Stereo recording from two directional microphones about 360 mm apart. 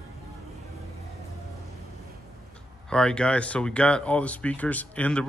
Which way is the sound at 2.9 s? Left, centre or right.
Centre.